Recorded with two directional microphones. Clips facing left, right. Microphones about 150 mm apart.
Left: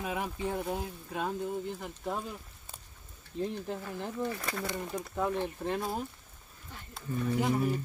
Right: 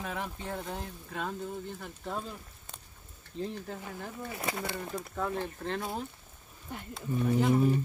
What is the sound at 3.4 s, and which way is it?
Speech, 25° left (ahead or behind).